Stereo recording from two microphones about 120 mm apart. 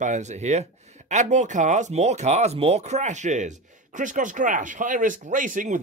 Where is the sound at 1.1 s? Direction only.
80° right.